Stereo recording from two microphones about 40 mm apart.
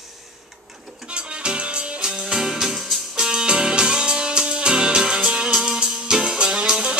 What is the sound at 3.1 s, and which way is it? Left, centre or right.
Music, centre.